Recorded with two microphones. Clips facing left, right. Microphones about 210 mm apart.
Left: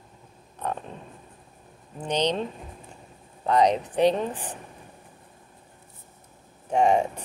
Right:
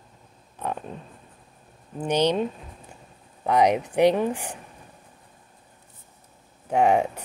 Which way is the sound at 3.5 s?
10° right (ahead or behind).